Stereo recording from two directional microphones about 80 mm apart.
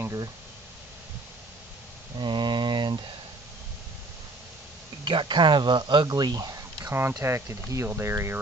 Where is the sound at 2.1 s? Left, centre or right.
Right.